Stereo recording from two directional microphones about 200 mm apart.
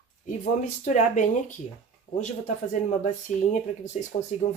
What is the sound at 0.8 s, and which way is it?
Speech, 35° left (ahead or behind).